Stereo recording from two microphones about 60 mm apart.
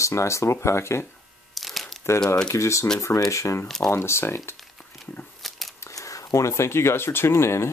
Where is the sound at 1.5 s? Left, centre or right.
Centre.